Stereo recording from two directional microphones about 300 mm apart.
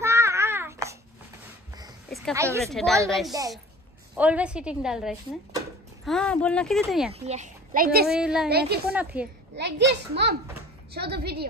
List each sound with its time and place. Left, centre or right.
0.0 s a sound: centre
2.3 s speech: centre
2.6 s speech: centre
7.2 s a child's voice: right
8.1 s speech: centre
8.5 s a child's voice: right
8.9 s speech: centre
9.6 s a child's voice: right